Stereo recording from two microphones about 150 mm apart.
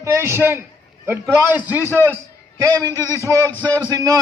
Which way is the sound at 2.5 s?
20° right (ahead or behind).